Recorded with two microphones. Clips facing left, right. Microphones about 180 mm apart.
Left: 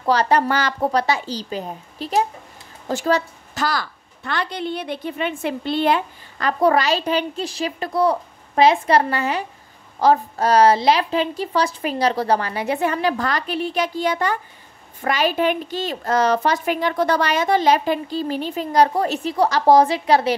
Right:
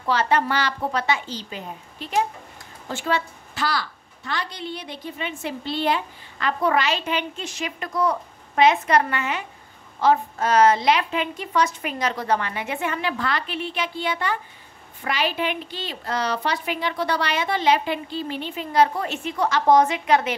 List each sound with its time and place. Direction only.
0.0 s a woman's voice: 40° left (ahead or behind)